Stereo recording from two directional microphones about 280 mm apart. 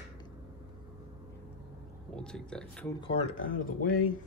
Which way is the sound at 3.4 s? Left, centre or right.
Left.